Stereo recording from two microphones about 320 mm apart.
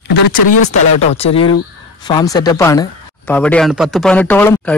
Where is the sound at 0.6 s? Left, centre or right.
Centre.